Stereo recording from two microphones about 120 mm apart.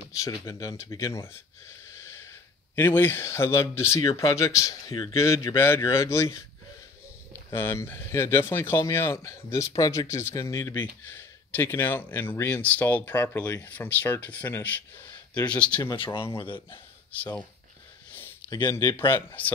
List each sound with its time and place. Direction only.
0.2 s speech: 30° left (ahead or behind)
2.7 s speech: 20° left (ahead or behind)
7.5 s speech: 20° left (ahead or behind)
10.8 s speech: 15° left (ahead or behind)
16.3 s speech: 45° left (ahead or behind)
18.7 s speech: 20° left (ahead or behind)